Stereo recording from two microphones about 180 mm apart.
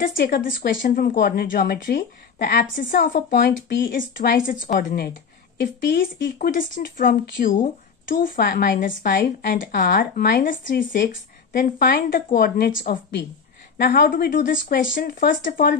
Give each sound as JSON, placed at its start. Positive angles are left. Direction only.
{"t": 0.0, "sound": "a woman's voice", "side_deg": 55}
{"t": 3.4, "sound": "a woman's voice", "side_deg": 65}
{"t": 6.4, "sound": "a woman's voice", "side_deg": 50}
{"t": 9.1, "sound": "a woman's voice", "side_deg": 70}
{"t": 10.5, "sound": "a woman's voice", "side_deg": 50}